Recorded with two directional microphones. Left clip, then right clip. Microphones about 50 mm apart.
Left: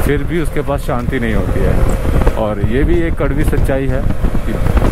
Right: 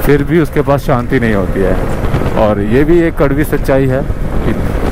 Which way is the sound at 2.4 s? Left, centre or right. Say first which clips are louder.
Right 10 dB; right.